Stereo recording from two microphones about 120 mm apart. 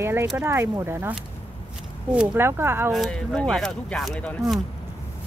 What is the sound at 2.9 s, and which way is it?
Speech, centre (ahead or behind).